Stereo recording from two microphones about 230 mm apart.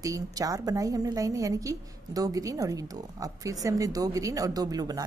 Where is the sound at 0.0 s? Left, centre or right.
Centre.